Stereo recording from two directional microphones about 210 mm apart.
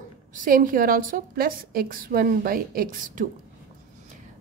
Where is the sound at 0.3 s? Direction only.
40° right (ahead or behind).